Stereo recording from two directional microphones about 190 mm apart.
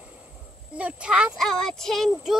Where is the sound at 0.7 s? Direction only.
5° right (ahead or behind).